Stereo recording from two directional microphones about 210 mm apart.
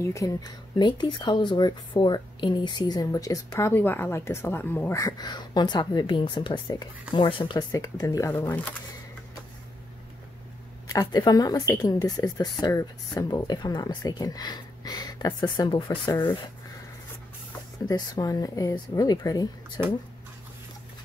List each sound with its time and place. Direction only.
0.0 s speech: 15° left (ahead or behind)
10.9 s speech: 20° left (ahead or behind)
17.8 s speech: 20° left (ahead or behind)